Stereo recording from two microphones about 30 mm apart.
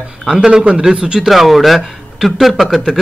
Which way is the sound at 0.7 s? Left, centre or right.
Right.